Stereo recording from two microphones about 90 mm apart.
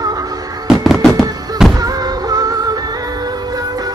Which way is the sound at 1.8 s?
45° right (ahead or behind).